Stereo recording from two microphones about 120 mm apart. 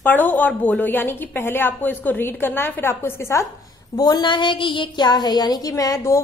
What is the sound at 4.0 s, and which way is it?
A woman's voice, 35° left (ahead or behind).